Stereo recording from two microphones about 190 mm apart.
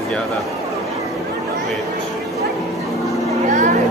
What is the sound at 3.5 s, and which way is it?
Vehicle, 40° right (ahead or behind).